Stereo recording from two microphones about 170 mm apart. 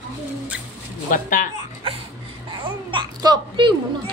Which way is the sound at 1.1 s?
55° left (ahead or behind).